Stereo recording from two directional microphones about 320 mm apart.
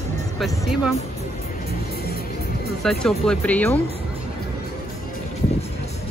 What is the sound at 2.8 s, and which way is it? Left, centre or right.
Speech, centre.